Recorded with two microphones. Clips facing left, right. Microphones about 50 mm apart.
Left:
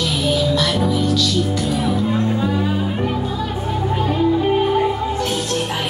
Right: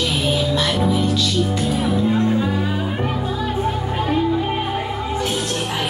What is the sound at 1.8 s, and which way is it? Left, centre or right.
Music, centre.